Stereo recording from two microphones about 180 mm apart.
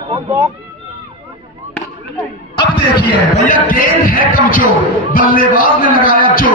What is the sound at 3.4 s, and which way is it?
A man's voice, 50° left (ahead or behind).